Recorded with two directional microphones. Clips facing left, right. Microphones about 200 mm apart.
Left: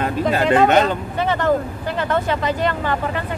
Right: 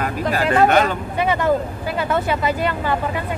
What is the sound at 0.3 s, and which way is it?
Speech, 25° left (ahead or behind).